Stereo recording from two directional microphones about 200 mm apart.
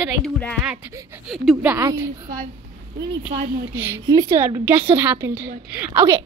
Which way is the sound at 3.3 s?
40° right (ahead or behind).